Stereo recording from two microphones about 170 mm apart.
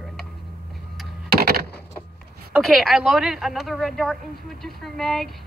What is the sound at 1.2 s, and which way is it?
Power windows, 60° right (ahead or behind).